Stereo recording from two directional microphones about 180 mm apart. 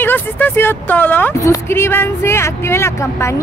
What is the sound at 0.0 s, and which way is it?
Speech, 10° left (ahead or behind).